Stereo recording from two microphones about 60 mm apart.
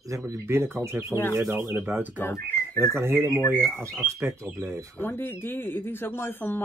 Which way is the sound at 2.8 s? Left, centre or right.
Right.